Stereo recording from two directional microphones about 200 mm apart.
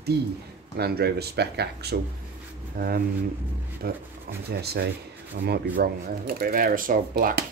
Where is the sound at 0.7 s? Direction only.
55° right (ahead or behind).